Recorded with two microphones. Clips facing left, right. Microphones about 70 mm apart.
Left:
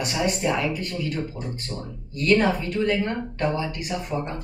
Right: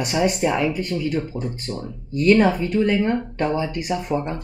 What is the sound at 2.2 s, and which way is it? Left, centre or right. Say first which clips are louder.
Speech: right 4 dB; centre.